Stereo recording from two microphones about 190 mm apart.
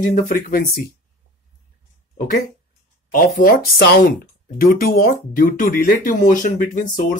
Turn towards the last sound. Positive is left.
turn(degrees=45)  # may be behind; listen again after turning